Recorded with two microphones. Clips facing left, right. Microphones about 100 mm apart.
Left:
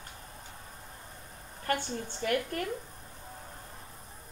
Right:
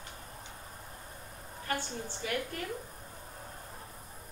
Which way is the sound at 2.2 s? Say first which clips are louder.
Left 6 dB; 55° left (ahead or behind).